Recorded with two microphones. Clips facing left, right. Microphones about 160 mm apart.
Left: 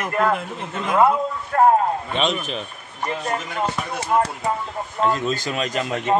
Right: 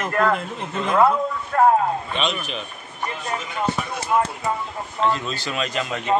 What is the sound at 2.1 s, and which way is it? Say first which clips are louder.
Speech: left 3 dB; 45° left (ahead or behind).